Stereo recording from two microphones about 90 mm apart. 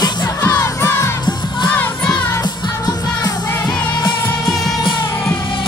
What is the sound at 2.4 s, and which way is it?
Music, 50° left (ahead or behind).